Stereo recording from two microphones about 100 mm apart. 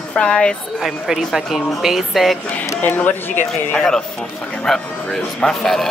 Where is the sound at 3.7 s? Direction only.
10° left (ahead or behind).